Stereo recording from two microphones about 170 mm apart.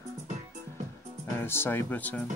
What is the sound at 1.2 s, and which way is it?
Speech, 15° left (ahead or behind).